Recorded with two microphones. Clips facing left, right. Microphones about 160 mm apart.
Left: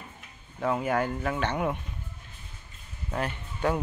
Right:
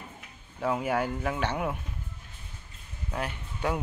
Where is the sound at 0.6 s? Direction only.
5° right (ahead or behind).